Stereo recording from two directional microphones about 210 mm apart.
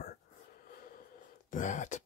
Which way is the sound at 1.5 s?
35° left (ahead or behind).